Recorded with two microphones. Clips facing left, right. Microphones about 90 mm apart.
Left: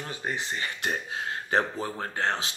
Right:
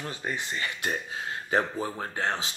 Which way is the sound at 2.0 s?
35° left (ahead or behind).